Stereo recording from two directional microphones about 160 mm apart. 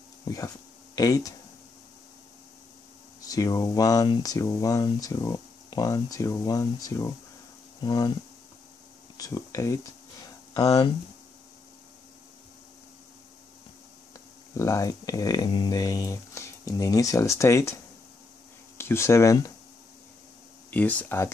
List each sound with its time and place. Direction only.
0.2 s speech: 20° left (ahead or behind)
3.2 s speech: 20° left (ahead or behind)
9.1 s speech: 20° left (ahead or behind)
14.6 s speech: 20° left (ahead or behind)
18.8 s speech: 15° left (ahead or behind)
20.7 s speech: 10° left (ahead or behind)